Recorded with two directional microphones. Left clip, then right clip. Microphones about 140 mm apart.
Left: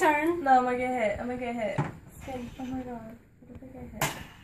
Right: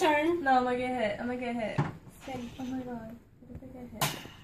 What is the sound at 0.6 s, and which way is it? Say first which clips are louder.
A woman's voice: left 3 dB; 10° left (ahead or behind).